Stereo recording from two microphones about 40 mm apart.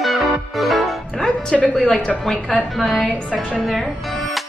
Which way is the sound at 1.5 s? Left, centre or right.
Centre.